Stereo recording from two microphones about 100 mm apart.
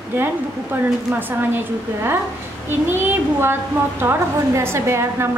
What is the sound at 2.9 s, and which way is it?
A woman's voice, 20° right (ahead or behind).